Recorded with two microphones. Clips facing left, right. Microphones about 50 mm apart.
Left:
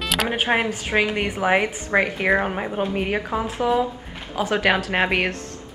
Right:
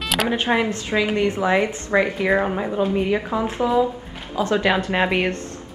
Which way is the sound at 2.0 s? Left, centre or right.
Left.